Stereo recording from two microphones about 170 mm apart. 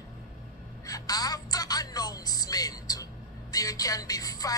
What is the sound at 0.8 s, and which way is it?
A woman's voice, 20° left (ahead or behind).